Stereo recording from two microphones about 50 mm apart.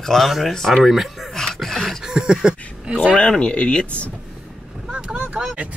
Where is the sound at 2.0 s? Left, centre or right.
Centre.